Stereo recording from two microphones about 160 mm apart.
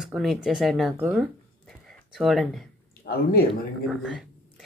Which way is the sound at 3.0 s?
70° left (ahead or behind).